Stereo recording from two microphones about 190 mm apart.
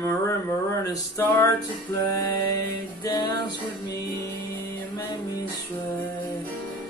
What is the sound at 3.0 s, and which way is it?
Music, 20° left (ahead or behind).